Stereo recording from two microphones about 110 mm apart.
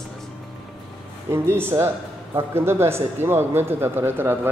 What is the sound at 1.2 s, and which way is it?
Speech, 20° right (ahead or behind).